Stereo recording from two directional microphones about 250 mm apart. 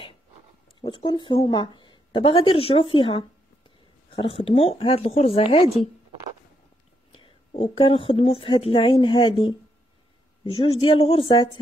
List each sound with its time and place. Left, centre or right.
0.7 s speech: centre
7.1 s speech: left